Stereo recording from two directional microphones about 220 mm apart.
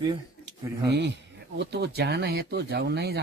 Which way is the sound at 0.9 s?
50° right (ahead or behind).